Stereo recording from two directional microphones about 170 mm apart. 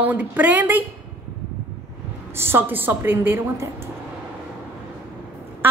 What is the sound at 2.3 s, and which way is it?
A woman's voice, 15° right (ahead or behind).